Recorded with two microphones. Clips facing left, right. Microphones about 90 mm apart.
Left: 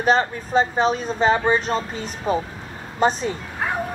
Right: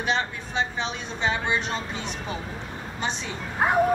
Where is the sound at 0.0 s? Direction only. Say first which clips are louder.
Left 8 dB; 40° left (ahead or behind).